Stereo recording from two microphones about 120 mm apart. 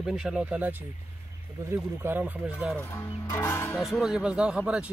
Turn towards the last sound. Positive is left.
turn(degrees=-10)  # may be behind; listen again after turning